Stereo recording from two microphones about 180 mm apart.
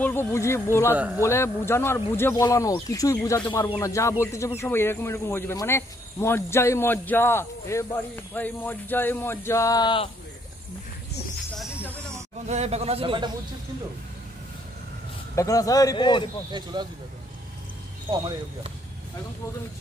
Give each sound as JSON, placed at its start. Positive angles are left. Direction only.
{"t": 0.0, "sound": "speech", "side_deg": 15}
{"t": 0.9, "sound": "speech", "side_deg": -10}
{"t": 1.2, "sound": "speech", "side_deg": 15}
{"t": 11.5, "sound": "music", "side_deg": 0}
{"t": 12.4, "sound": "speech", "side_deg": -35}
{"t": 15.3, "sound": "speech", "side_deg": 20}
{"t": 16.7, "sound": "speech", "side_deg": -25}